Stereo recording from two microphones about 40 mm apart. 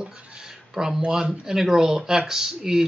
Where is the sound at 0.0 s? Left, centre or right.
Right.